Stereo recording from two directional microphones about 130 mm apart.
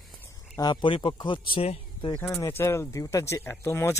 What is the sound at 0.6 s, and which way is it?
Speech, 35° left (ahead or behind).